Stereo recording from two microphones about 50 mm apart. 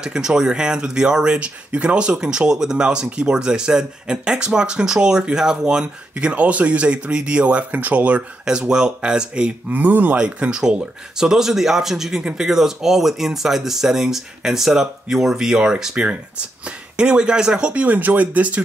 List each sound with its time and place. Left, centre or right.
0.0 s speech: centre
6.1 s speech: right
8.5 s speech: centre
9.7 s speech: right
10.1 s speech: centre
12.2 s speech: centre
12.4 s speech: centre
17.8 s speech: right